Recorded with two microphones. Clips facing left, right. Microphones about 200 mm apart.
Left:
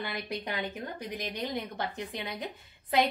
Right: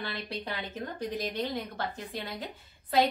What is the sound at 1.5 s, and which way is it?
Speech, 20° left (ahead or behind).